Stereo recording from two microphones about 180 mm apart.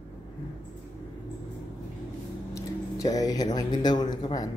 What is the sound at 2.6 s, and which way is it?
Speech, 20° left (ahead or behind).